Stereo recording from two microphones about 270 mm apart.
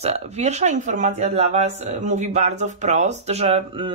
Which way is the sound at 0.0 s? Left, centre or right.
Right.